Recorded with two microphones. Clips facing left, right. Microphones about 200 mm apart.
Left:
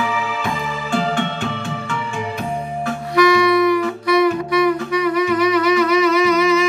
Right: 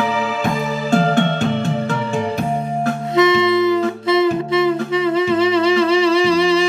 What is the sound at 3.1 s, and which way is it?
Saxophone, 25° right (ahead or behind).